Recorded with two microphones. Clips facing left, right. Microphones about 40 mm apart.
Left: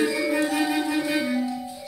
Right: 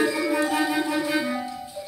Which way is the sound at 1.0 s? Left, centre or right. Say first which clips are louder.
Left 1 dB; right.